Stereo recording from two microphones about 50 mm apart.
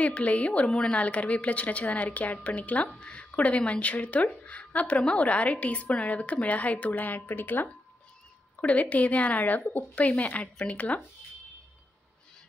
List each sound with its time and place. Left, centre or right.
0.0 s a woman's voice: left
0.7 s speech: centre
0.9 s a woman's voice: left
6.9 s a woman's voice: left
8.5 s a woman's voice: left